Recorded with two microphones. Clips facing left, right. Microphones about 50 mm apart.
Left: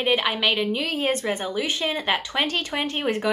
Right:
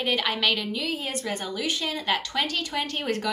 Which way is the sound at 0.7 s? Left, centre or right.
Left.